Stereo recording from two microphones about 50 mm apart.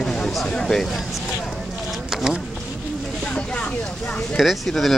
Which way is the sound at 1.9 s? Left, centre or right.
Centre.